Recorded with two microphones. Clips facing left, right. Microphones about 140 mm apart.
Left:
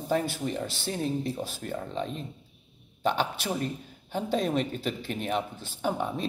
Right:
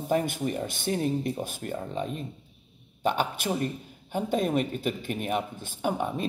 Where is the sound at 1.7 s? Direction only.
15° right (ahead or behind).